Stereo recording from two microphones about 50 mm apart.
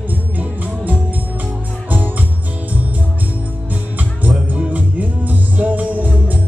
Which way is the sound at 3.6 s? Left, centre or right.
Right.